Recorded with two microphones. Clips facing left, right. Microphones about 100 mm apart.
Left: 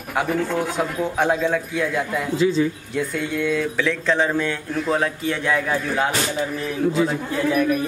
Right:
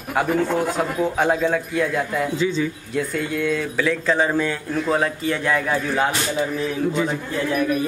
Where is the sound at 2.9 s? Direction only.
Centre (ahead or behind).